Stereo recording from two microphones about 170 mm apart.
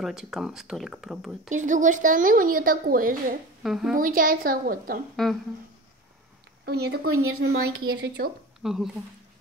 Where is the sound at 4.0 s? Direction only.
60° right (ahead or behind).